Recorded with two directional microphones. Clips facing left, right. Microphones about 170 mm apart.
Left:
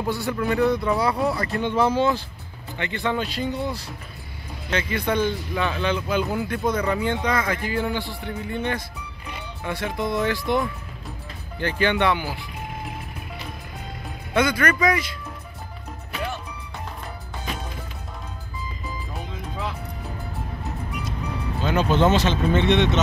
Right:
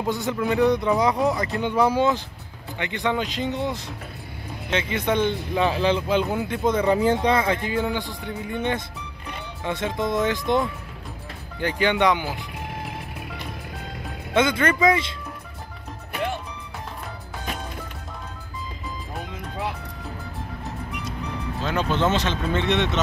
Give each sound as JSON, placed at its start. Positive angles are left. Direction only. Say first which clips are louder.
{"t": 0.0, "sound": "speech", "louder": "even", "side_deg": -20}
{"t": 5.5, "sound": "speech", "louder": "right 3 dB", "side_deg": -30}
{"t": 14.3, "sound": "speech", "louder": "right 1 dB", "side_deg": -25}
{"t": 21.6, "sound": "speech", "louder": "left 3 dB", "side_deg": 5}